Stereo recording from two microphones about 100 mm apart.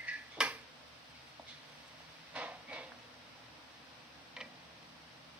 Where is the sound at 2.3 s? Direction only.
15° right (ahead or behind).